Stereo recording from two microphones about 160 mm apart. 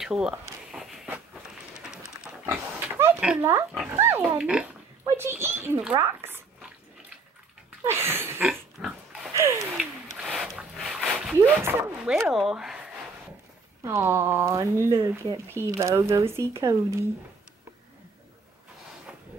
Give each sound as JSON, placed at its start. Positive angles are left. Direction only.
{"t": 0.0, "sound": "speech", "side_deg": -5}
{"t": 0.7, "sound": "walk", "side_deg": 0}
{"t": 1.3, "sound": "train", "side_deg": -5}
{"t": 2.2, "sound": "pig", "side_deg": -15}
{"t": 3.9, "sound": "a child's voice", "side_deg": -15}
{"t": 7.8, "sound": "a sound", "side_deg": -15}
{"t": 8.5, "sound": "pig", "side_deg": 0}
{"t": 9.3, "sound": "a sound", "side_deg": -20}
{"t": 9.8, "sound": "a sound", "side_deg": 0}
{"t": 11.6, "sound": "speech", "side_deg": -5}
{"t": 13.8, "sound": "speech", "side_deg": -15}